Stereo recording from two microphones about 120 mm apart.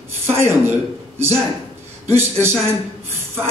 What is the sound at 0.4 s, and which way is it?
A man's voice, 20° right (ahead or behind).